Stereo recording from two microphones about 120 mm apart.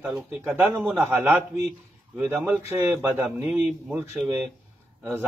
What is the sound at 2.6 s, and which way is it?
Speech, 15° right (ahead or behind).